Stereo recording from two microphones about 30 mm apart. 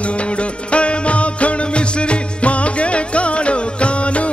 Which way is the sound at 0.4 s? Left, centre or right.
Left.